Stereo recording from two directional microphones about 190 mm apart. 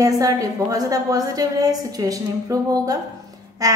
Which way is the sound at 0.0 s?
20° right (ahead or behind).